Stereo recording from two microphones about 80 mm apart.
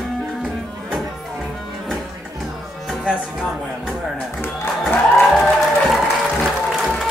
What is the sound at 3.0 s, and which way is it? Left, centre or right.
Music, centre.